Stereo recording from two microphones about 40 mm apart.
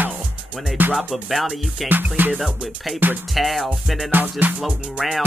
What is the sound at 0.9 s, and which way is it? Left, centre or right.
Speech, centre.